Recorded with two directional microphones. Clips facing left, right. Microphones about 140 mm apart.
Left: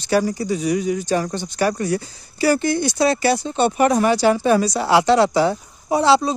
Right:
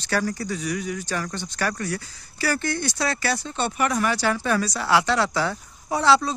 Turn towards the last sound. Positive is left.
turn(degrees=15)  # may be behind; listen again after turning